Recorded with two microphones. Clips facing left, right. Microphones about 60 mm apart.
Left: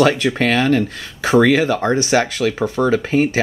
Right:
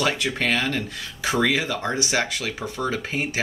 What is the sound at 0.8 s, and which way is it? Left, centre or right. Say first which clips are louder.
Speech: left 8 dB; left.